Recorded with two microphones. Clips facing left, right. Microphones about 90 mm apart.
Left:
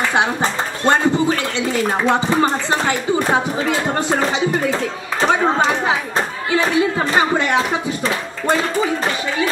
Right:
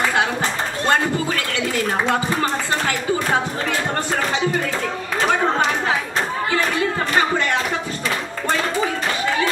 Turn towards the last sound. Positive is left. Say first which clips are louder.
# left 3 dB
turn(degrees=15)  # may be behind; listen again after turning